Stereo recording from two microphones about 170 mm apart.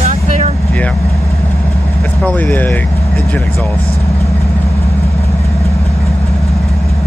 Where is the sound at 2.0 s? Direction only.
10° left (ahead or behind).